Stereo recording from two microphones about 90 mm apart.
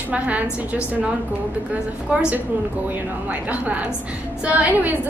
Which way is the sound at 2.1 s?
15° right (ahead or behind).